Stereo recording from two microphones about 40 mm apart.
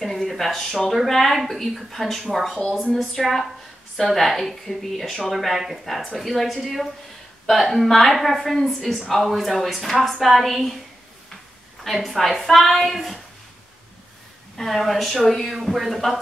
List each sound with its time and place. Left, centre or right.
0.0 s speech: centre
11.8 s speech: centre
14.6 s speech: centre
15.7 s speech: centre